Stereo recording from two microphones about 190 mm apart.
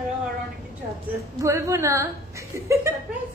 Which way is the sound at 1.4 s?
15° right (ahead or behind).